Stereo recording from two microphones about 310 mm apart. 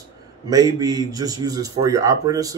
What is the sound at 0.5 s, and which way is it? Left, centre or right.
A man's voice, centre.